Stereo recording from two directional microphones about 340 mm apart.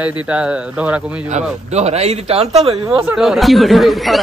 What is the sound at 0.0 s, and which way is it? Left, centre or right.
Speech, centre.